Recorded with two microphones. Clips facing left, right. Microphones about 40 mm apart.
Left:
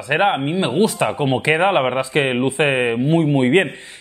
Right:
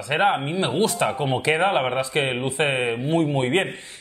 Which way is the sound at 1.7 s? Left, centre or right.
Centre.